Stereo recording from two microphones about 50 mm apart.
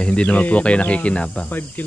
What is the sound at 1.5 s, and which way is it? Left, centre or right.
Cricket, left.